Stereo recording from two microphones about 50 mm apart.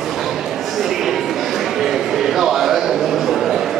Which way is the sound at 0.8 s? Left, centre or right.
Centre.